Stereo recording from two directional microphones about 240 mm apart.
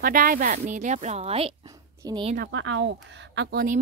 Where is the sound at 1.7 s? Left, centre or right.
Centre.